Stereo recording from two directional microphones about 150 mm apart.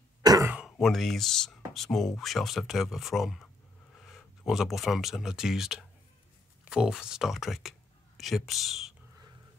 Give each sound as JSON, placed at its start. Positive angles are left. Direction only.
{"t": 0.2, "sound": "cough", "side_deg": -25}
{"t": 0.7, "sound": "speech", "side_deg": 0}